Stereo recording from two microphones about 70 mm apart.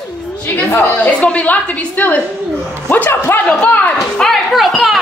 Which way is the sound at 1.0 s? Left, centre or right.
Centre.